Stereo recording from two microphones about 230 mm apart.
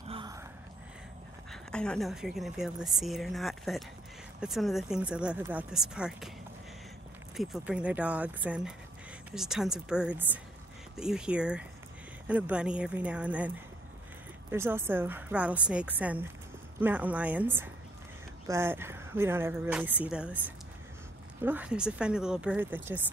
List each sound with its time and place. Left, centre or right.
0.1 s gasp: centre
1.5 s a woman's voice: centre
7.3 s a woman's voice: centre
14.5 s a woman's voice: centre